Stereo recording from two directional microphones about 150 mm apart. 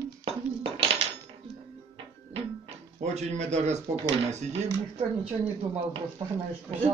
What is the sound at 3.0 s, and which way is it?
A man's voice, 50° right (ahead or behind).